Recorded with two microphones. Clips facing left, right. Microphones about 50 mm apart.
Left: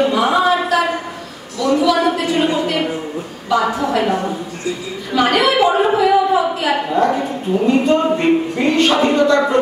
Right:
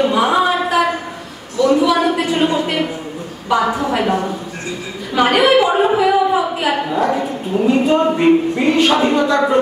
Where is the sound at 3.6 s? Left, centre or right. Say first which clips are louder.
Left 1 dB; centre.